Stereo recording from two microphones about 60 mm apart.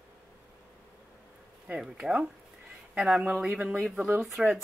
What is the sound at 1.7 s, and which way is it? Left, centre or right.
Speech, centre.